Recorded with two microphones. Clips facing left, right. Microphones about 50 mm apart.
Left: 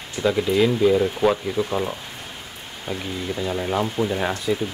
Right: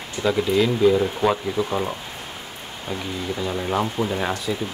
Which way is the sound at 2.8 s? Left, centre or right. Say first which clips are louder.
Even; centre.